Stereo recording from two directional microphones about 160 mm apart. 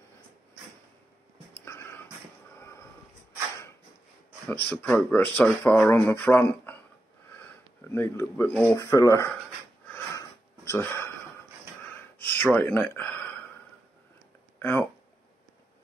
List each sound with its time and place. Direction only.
1.6 s music: 15° left (ahead or behind)
4.6 s speech: 10° left (ahead or behind)
7.9 s speech: 15° left (ahead or behind)
9.8 s wheeze: 15° left (ahead or behind)
12.2 s a sound: 10° left (ahead or behind)
14.6 s a sound: 10° left (ahead or behind)